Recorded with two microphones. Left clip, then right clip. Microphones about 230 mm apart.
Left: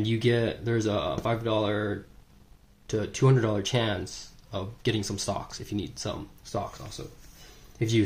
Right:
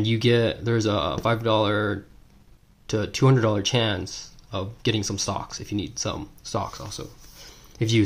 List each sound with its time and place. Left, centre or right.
0.0 s speech: centre
6.4 s speech: right